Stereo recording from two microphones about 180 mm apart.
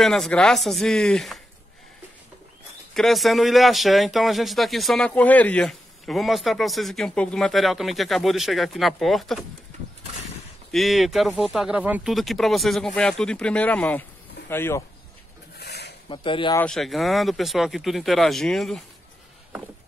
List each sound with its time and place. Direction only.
0.0 s speech: centre (ahead or behind)
2.9 s speech: centre (ahead or behind)
10.7 s speech: centre (ahead or behind)
15.6 s a sound: 65° left (ahead or behind)
16.1 s speech: 25° left (ahead or behind)
16.5 s speech: 5° left (ahead or behind)